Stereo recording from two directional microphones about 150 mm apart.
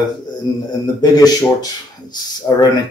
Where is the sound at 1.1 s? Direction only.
25° left (ahead or behind).